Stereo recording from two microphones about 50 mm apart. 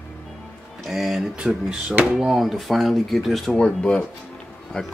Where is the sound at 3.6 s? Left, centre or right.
Left.